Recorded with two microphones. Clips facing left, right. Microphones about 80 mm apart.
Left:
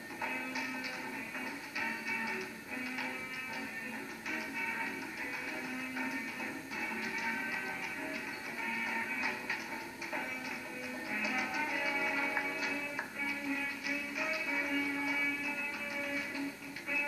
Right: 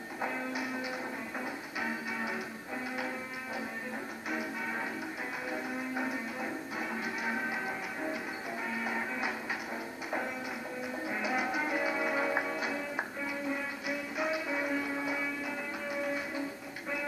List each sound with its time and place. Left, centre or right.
0.2 s music: right
1.8 s music: right
4.3 s music: right
11.1 s music: right